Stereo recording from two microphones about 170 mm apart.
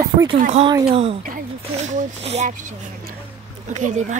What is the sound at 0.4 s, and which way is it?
Speech, 40° right (ahead or behind).